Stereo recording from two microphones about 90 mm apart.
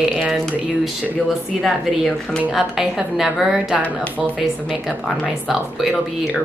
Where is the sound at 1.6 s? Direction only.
5° left (ahead or behind).